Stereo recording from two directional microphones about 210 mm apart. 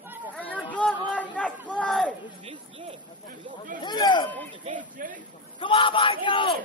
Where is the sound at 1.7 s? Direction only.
5° left (ahead or behind).